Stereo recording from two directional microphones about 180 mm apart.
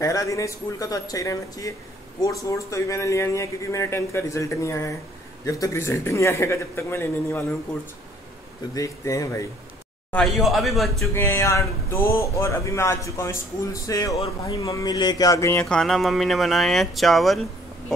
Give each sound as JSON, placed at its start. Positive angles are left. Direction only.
{"t": 0.0, "sound": "speech", "side_deg": 20}
{"t": 8.7, "sound": "speech", "side_deg": 20}
{"t": 10.1, "sound": "speech", "side_deg": 0}
{"t": 11.1, "sound": "speech", "side_deg": 15}
{"t": 15.6, "sound": "speech", "side_deg": 5}